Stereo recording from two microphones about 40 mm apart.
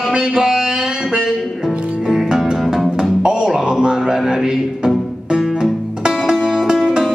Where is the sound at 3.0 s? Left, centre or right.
Centre.